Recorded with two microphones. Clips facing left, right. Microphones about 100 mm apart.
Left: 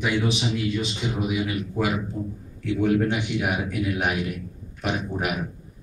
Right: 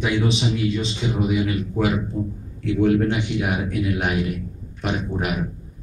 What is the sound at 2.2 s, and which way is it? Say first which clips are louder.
Speech: right 4 dB; 15° right (ahead or behind).